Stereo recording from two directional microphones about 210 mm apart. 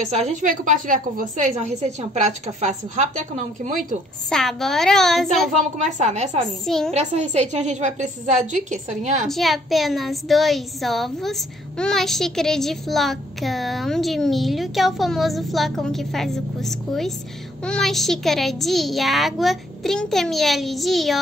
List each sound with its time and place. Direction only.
0.1 s a woman's voice: 35° right (ahead or behind)
4.3 s a child's voice: centre (ahead or behind)
5.9 s a woman's voice: 35° right (ahead or behind)
6.4 s a child's voice: centre (ahead or behind)
6.9 s a woman's voice: 35° right (ahead or behind)
9.3 s a child's voice: centre (ahead or behind)